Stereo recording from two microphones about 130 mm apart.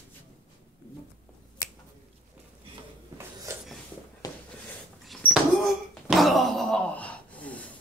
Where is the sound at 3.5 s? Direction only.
25° right (ahead or behind).